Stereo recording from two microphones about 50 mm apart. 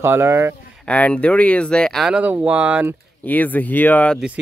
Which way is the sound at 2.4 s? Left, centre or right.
Right.